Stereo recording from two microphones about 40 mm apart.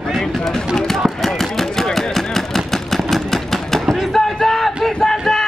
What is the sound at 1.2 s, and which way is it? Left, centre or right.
Vehicle, centre.